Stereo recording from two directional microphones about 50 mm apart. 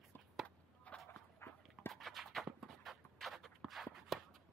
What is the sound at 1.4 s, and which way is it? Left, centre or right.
Dog, left.